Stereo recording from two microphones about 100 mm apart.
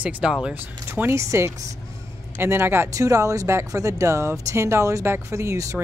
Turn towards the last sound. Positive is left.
turn(degrees=-30)  # may be behind; listen again after turning